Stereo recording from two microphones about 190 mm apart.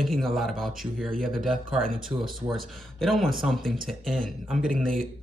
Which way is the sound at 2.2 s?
Centre (ahead or behind).